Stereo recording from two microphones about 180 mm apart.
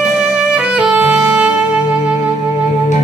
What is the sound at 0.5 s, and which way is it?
Music, 5° right (ahead or behind).